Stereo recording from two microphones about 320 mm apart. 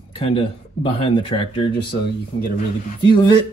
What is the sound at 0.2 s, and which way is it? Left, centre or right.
Speech, centre.